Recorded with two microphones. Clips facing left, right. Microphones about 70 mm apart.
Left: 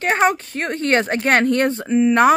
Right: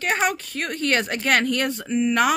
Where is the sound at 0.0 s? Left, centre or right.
Left.